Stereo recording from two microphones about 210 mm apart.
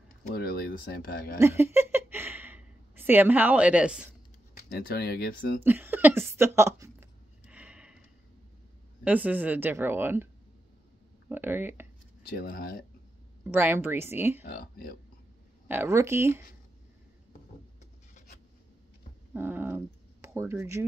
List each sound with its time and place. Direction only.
0.3 s speech: 50° left (ahead or behind)
1.4 s a sound: 10° right (ahead or behind)
4.6 s speech: 45° left (ahead or behind)
5.6 s a sound: 10° right (ahead or behind)
9.0 s speech: 5° right (ahead or behind)
11.2 s speech: 10° right (ahead or behind)
12.3 s speech: 45° left (ahead or behind)
13.4 s speech: 10° right (ahead or behind)
14.4 s speech: 45° left (ahead or behind)
15.7 s speech: 10° right (ahead or behind)
19.3 s speech: 10° right (ahead or behind)